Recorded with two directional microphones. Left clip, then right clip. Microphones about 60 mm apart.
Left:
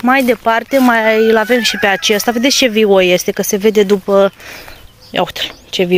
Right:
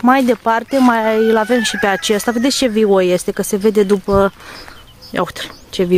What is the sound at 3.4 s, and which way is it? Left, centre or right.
Speech, right.